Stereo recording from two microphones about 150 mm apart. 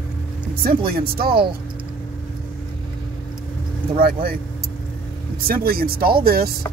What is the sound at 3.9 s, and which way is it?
Speech, 75° right (ahead or behind).